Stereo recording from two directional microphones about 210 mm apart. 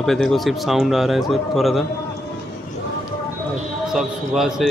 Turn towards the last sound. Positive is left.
turn(degrees=0)  # may be behind; listen again after turning